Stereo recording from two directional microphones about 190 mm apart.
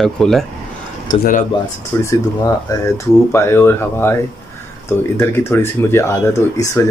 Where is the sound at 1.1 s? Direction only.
45° left (ahead or behind).